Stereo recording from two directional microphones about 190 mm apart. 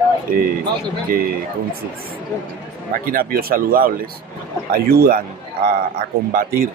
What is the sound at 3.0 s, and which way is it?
Speech, 50° right (ahead or behind).